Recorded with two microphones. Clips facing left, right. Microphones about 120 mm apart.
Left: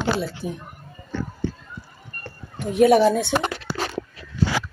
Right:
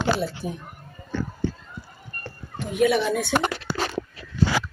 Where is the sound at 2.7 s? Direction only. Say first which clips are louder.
Left 6 dB; 35° left (ahead or behind).